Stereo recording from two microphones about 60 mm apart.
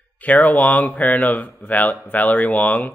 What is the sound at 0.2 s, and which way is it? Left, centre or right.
Speech, left.